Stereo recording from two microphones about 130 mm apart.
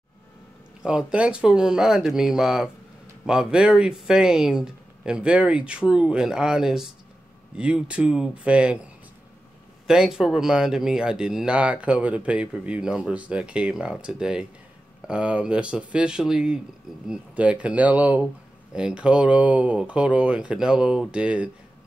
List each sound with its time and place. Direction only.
0.8 s speech: 10° right (ahead or behind)
9.8 s speech: 5° right (ahead or behind)